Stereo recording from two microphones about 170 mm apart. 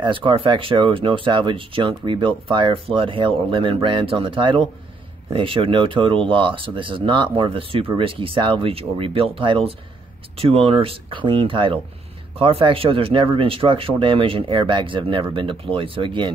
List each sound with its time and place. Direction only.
0.0 s speech: 30° right (ahead or behind)